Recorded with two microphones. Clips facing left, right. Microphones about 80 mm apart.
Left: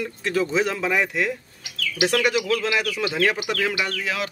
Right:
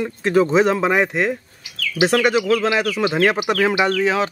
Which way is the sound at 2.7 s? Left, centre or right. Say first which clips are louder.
Right 5 dB; right.